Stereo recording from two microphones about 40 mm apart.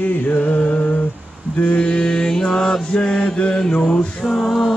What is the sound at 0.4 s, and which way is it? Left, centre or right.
Music, left.